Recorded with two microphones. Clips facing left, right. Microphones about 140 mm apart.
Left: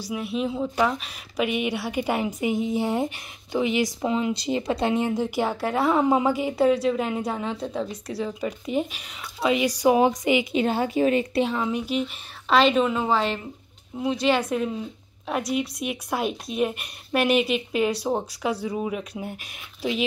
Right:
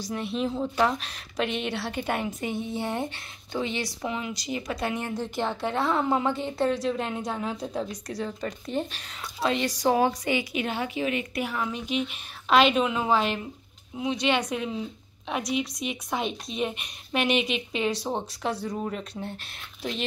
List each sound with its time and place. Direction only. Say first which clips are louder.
0.1 s speech: left 2 dB; 5° left (ahead or behind)
4.0 s speech: left 7 dB; 25° left (ahead or behind)
10.5 s a woman's voice: left 7 dB; 35° left (ahead or behind)
11.8 s speech: left 2 dB; 5° left (ahead or behind)
12.7 s a woman's voice: left 2 dB; 5° right (ahead or behind)